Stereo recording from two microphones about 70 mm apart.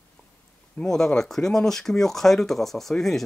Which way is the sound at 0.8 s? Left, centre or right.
Centre.